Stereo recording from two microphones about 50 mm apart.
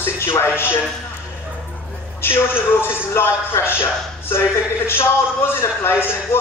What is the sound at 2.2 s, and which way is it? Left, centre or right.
Speech, left.